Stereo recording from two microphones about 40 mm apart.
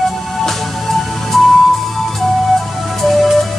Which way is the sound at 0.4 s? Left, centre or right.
Centre.